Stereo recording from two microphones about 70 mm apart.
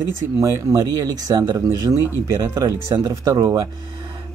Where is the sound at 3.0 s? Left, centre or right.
Right.